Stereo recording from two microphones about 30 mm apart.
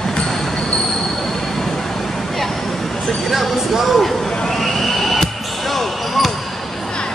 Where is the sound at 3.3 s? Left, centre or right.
Centre.